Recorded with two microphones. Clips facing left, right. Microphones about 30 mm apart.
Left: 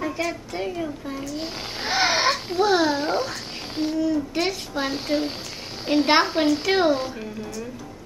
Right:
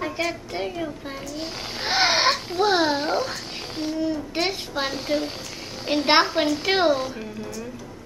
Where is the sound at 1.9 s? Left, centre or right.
Centre.